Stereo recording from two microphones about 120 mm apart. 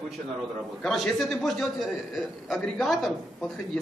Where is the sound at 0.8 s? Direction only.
Centre (ahead or behind).